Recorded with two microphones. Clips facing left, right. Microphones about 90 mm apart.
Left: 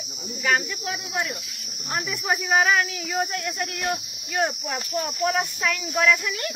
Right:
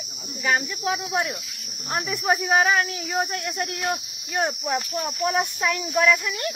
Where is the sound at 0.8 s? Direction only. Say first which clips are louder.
Right 4 dB; 30° right (ahead or behind).